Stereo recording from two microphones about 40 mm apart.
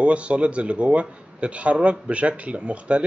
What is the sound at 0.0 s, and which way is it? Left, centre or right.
Speech, right.